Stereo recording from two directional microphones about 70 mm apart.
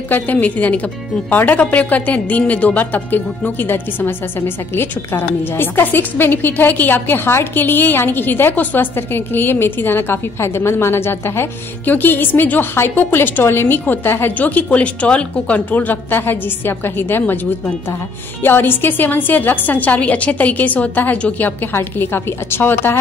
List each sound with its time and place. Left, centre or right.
0.1 s a woman's voice: left
18.4 s a woman's voice: left